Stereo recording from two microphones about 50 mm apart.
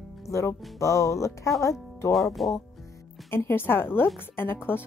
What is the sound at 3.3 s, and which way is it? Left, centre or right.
A woman's voice, left.